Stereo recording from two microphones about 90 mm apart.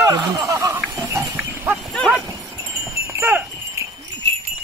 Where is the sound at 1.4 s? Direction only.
20° right (ahead or behind).